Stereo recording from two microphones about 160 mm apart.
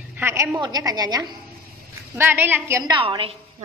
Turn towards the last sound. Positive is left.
turn(degrees=-35)  # may be behind; listen again after turning